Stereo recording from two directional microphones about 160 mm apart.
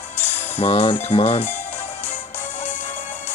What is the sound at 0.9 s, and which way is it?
Speech, 40° left (ahead or behind).